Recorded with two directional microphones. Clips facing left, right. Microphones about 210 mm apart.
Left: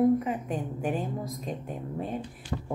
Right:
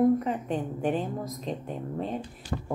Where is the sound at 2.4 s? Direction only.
40° right (ahead or behind).